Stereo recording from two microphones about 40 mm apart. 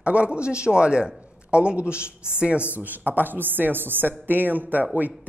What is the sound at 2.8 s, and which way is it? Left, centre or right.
A woman's voice, right.